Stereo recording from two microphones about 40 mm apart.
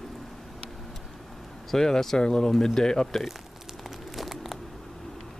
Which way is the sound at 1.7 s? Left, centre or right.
Centre.